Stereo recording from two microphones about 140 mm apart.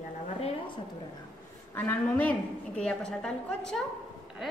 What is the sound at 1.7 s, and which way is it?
A woman's voice, 15° left (ahead or behind).